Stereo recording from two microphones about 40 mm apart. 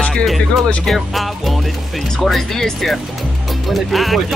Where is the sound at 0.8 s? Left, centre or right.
Centre.